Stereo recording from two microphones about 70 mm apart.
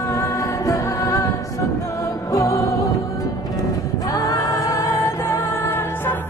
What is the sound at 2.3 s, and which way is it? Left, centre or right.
Music, left.